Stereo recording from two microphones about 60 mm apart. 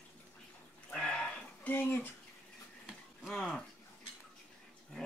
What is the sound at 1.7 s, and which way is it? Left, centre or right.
Speech, left.